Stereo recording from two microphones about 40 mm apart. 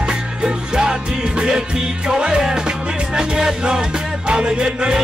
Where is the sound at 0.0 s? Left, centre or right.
Right.